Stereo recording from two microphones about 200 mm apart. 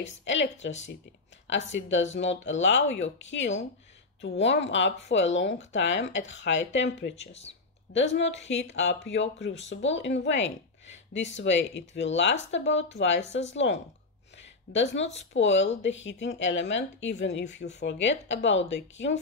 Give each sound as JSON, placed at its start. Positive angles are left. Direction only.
{"t": 0.2, "sound": "speech", "side_deg": 65}
{"t": 1.7, "sound": "speech", "side_deg": 65}